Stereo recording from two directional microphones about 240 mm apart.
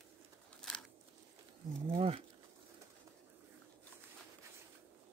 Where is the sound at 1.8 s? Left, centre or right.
Right.